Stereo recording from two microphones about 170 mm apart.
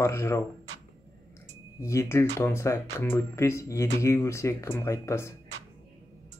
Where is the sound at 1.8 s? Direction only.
15° left (ahead or behind).